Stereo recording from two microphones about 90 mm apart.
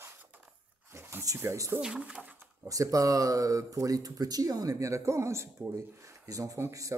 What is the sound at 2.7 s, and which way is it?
Speech, 40° right (ahead or behind).